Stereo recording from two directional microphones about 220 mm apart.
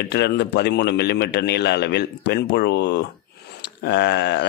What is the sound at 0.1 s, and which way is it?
A man's voice, 50° left (ahead or behind).